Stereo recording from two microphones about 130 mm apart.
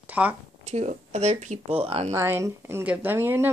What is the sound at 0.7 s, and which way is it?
Speech, 60° right (ahead or behind).